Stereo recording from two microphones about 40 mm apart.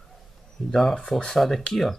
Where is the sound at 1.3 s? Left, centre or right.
Centre.